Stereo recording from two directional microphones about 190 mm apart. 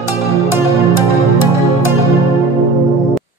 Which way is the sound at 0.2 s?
15° left (ahead or behind).